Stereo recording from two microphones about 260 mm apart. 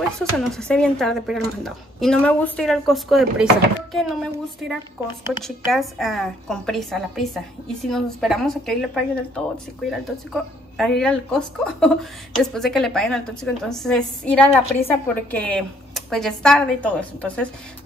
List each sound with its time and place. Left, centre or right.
0.2 s speech: centre